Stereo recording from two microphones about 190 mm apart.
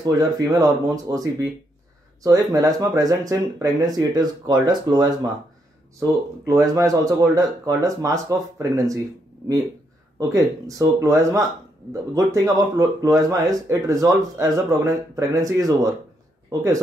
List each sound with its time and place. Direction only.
0.0 s speech: 20° right (ahead or behind)
10.1 s speech: 20° right (ahead or behind)